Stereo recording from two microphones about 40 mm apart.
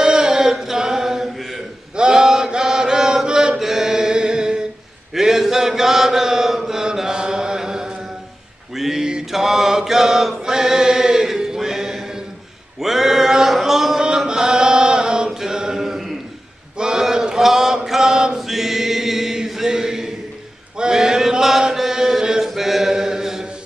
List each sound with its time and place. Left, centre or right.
0.0 s chant: centre
2.0 s chant: centre
3.5 s music: centre
5.1 s chant: centre
8.7 s a sound: centre
9.3 s mantra: centre
13.6 s a sound: centre
14.0 s chant: centre
16.7 s a sound: right
17.0 s chant: centre
17.8 s mantra: centre
18.4 s chant: centre
22.6 s mantra: centre